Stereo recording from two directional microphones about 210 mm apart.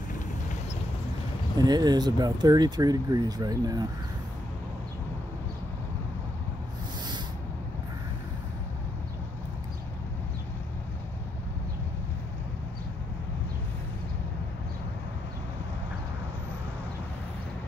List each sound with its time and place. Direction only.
1.6 s speech: 20° right (ahead or behind)